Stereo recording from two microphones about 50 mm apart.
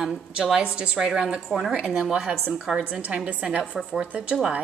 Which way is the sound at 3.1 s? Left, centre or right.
Right.